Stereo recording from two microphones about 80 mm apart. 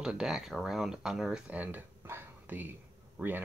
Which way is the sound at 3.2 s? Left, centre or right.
Right.